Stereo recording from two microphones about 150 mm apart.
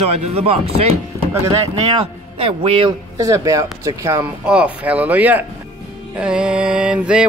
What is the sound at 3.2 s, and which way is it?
Speech, 20° right (ahead or behind).